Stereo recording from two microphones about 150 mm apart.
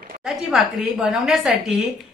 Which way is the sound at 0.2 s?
5° right (ahead or behind).